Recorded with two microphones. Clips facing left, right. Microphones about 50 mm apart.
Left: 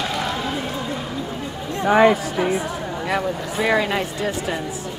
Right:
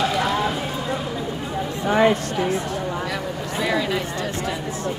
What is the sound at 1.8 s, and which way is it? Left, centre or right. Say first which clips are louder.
Speech: left 3 dB; centre.